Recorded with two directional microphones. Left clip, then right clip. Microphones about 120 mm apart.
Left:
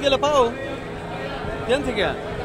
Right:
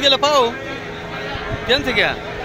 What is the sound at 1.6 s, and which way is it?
Speech, 35° right (ahead or behind).